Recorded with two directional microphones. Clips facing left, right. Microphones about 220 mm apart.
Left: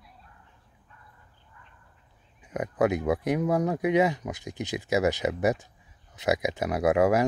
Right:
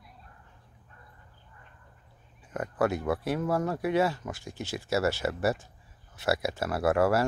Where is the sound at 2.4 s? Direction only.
15° left (ahead or behind).